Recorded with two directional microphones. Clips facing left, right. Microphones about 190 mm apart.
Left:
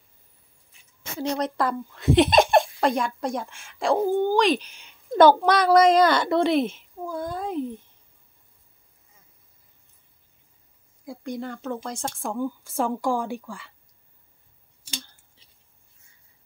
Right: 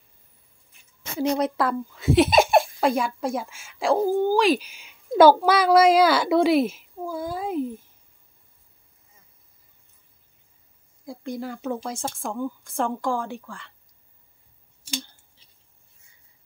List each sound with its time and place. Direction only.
1.2 s speech: 10° right (ahead or behind)
11.1 s speech: centre (ahead or behind); by 13.6 s 15° left (ahead or behind)